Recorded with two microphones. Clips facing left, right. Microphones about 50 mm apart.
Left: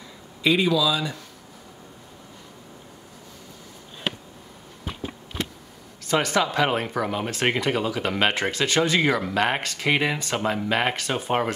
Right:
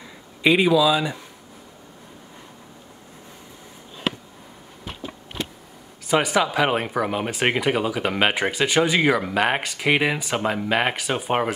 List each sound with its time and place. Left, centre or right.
0.4 s speech: right
6.0 s speech: centre